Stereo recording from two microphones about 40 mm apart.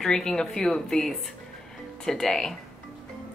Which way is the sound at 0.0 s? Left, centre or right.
Centre.